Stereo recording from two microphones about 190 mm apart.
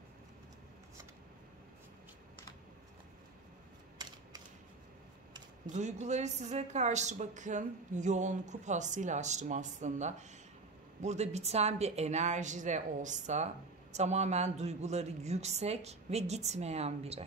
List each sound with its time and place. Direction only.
5.7 s a woman's voice: 35° right (ahead or behind)